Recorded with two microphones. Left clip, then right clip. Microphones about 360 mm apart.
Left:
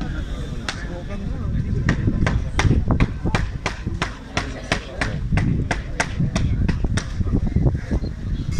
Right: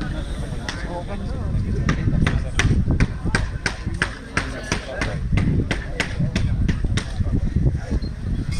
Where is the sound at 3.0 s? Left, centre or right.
Centre.